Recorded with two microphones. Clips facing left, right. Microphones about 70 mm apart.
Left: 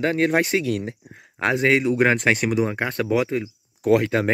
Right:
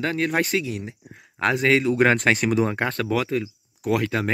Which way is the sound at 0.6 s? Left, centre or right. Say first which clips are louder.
Left 6 dB; left.